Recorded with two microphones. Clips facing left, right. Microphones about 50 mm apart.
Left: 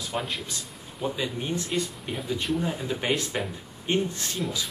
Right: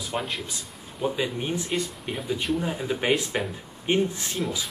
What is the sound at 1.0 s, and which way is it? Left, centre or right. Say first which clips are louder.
Speech: right 3 dB; centre.